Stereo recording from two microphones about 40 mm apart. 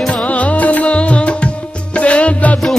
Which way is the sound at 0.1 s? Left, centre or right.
Left.